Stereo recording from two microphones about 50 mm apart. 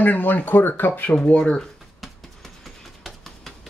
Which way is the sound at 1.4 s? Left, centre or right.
Centre.